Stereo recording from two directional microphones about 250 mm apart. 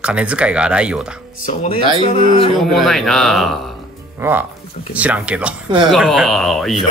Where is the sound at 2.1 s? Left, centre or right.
Left.